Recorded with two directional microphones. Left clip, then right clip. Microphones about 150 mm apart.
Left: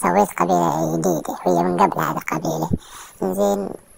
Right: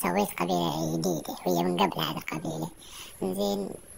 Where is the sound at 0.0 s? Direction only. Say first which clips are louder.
Left 11 dB; 25° left (ahead or behind).